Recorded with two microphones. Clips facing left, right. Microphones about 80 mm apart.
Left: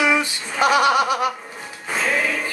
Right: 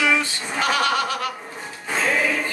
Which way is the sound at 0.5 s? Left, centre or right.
Centre.